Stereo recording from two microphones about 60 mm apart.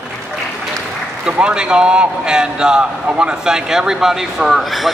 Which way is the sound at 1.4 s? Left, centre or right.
Centre.